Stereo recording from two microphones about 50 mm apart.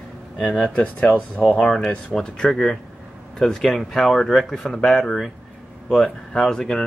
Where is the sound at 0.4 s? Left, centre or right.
Centre.